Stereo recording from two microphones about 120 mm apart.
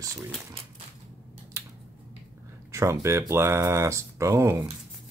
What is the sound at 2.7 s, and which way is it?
Speech, 25° right (ahead or behind).